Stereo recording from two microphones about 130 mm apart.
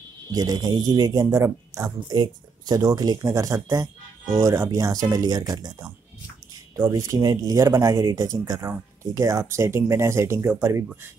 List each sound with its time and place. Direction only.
0.3 s speech: 30° right (ahead or behind)
2.1 s speech: 35° right (ahead or behind)